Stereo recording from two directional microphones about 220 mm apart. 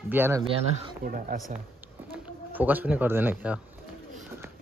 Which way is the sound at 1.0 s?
35° right (ahead or behind).